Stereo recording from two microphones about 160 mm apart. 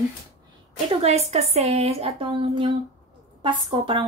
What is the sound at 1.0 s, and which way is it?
Speech, 40° right (ahead or behind).